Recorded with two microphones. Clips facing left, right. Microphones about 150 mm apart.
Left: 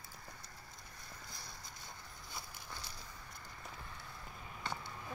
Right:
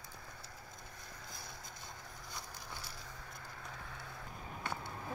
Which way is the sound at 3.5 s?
90° right.